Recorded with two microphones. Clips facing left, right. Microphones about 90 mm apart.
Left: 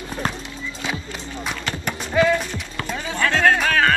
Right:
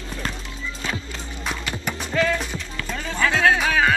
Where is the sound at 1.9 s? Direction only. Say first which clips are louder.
Left 4 dB; 15° left (ahead or behind).